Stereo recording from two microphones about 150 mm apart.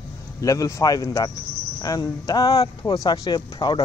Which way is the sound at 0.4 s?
20° left (ahead or behind).